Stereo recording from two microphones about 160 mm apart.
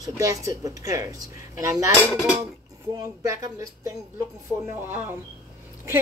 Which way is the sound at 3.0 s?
20° right (ahead or behind).